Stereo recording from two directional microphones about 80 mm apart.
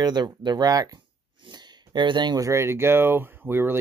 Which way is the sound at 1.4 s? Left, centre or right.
Right.